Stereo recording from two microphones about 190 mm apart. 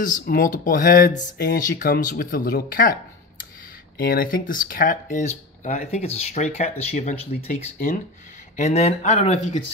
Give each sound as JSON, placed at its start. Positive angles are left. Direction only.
{"t": 0.0, "sound": "speech", "side_deg": 45}
{"t": 4.0, "sound": "speech", "side_deg": 50}